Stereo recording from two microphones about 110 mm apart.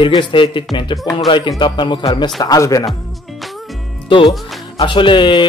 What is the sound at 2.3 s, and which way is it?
Music, 35° left (ahead or behind).